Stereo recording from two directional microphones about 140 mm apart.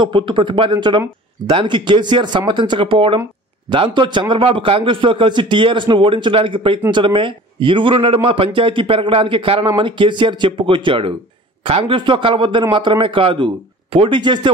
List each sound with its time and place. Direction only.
0.0 s a man's voice: 35° right (ahead or behind)